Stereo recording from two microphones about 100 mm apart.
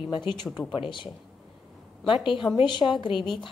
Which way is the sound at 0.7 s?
55° left (ahead or behind).